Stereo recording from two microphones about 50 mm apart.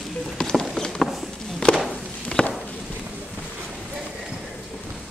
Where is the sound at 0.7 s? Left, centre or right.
Centre.